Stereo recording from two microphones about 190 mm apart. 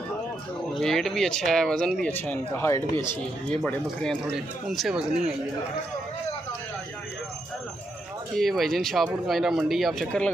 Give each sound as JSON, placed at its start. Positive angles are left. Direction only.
{"t": 0.7, "sound": "speech", "side_deg": 0}
{"t": 8.4, "sound": "speech", "side_deg": 0}